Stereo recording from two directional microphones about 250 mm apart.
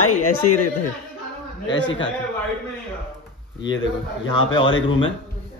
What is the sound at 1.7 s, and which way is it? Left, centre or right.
Speech, left.